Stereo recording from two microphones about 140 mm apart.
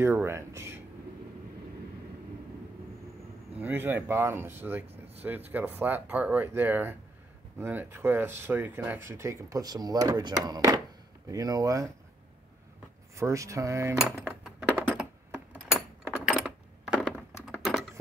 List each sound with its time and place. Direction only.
0.0 s speech: 20° right (ahead or behind)
3.5 s speech: 15° right (ahead or behind)
4.8 s speech: 45° right (ahead or behind)
5.5 s speech: 15° right (ahead or behind)
13.1 s speech: 20° right (ahead or behind)
13.9 s cutlery: 5° right (ahead or behind)
14.9 s a sound: 10° right (ahead or behind)